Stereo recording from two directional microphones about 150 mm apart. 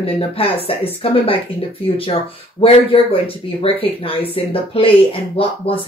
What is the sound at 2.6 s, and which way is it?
Speech, 40° left (ahead or behind).